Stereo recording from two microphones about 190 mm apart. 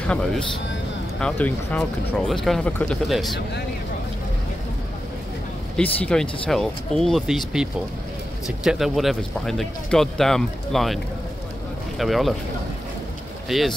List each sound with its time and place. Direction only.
0.0 s speech: 5° left (ahead or behind)
5.8 s speech: 5° left (ahead or behind)
12.0 s speech: centre (ahead or behind)
13.5 s speech: centre (ahead or behind)